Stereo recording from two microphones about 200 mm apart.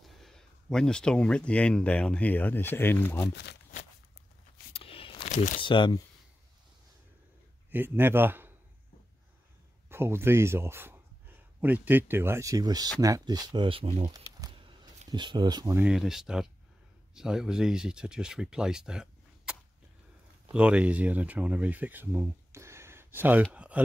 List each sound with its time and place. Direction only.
0.0 s speech: centre (ahead or behind)
3.3 s speech: 60° left (ahead or behind)
4.7 s a sound: 25° left (ahead or behind)
5.6 s speech: 25° left (ahead or behind)
7.7 s a man's voice: 10° right (ahead or behind)
9.8 s speech: 10° right (ahead or behind); by 14.0 s 30° right (ahead or behind)
14.0 s a sound: 20° right (ahead or behind)
15.8 s speech: centre (ahead or behind)
20.5 s speech: 5° right (ahead or behind)